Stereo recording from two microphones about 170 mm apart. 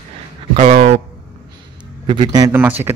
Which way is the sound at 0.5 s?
45° right (ahead or behind).